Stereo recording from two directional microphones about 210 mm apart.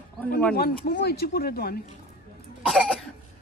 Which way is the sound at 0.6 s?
50° left (ahead or behind).